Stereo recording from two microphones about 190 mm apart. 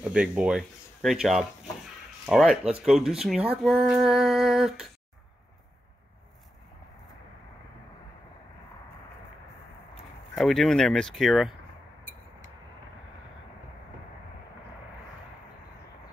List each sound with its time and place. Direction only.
0.0 s speech: 5° right (ahead or behind)
10.3 s speech: centre (ahead or behind)